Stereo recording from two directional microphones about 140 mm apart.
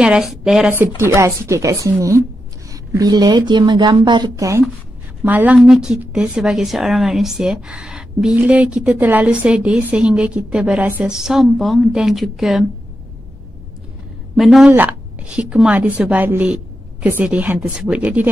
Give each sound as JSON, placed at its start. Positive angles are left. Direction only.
{"t": 0.0, "sound": "a woman's voice", "side_deg": -5}
{"t": 14.3, "sound": "a woman's voice", "side_deg": 0}
{"t": 14.7, "sound": "a woman's voice", "side_deg": -10}